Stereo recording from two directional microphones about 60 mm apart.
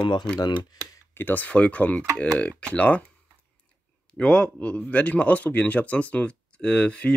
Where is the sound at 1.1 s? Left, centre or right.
Left.